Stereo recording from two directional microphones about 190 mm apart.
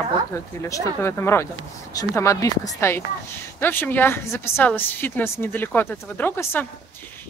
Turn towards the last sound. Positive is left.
turn(degrees=10)  # may be behind; listen again after turning